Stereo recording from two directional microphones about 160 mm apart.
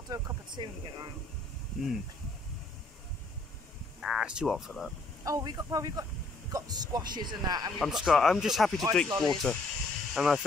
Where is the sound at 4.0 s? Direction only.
5° right (ahead or behind).